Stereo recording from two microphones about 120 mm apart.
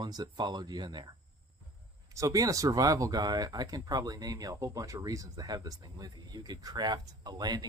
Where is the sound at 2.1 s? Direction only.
30° right (ahead or behind).